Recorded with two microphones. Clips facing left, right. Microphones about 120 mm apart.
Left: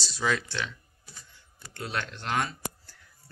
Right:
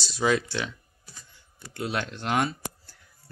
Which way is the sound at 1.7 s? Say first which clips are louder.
Right 4 dB; 10° right (ahead or behind).